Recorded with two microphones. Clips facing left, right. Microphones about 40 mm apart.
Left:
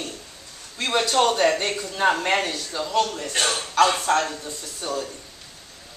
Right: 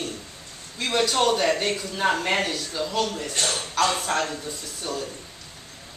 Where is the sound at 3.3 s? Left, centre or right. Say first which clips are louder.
Left 5 dB; left.